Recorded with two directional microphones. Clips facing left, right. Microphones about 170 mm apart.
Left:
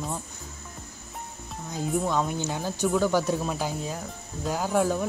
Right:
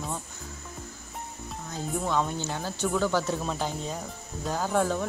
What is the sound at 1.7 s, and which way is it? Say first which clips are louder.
Speech: left 3 dB; 10° left (ahead or behind).